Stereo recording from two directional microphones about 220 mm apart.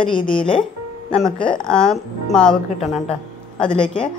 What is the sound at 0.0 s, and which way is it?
Speech, 20° left (ahead or behind).